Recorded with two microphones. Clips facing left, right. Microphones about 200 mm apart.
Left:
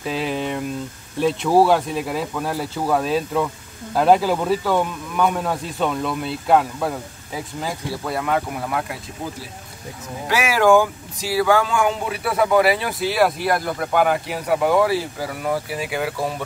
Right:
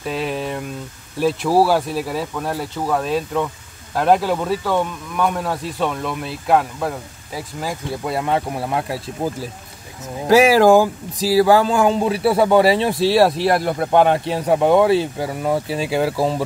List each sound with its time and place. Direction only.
0.0 s a sound: centre (ahead or behind)
1.2 s speech: 5° right (ahead or behind)
8.0 s speech: 25° right (ahead or behind)